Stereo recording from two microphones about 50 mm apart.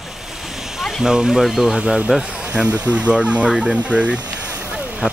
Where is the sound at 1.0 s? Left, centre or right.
Centre.